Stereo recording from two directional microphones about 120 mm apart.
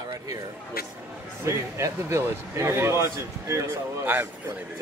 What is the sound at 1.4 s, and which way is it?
Speech, 25° right (ahead or behind).